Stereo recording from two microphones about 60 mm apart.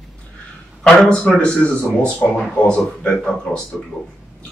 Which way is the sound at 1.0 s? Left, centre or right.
Centre.